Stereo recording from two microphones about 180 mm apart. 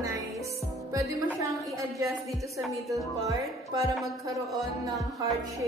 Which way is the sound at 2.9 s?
20° right (ahead or behind).